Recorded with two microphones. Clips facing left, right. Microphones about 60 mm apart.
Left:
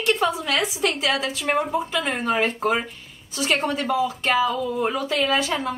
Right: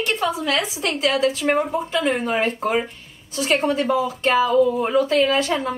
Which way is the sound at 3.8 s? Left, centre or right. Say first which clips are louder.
Right 2 dB; centre.